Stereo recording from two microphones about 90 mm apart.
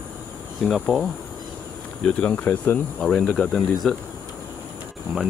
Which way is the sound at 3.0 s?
5° left (ahead or behind).